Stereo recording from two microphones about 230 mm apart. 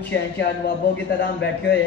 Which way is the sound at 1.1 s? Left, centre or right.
Left.